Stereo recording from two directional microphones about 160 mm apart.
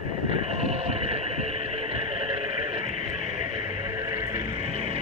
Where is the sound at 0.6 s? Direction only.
40° right (ahead or behind).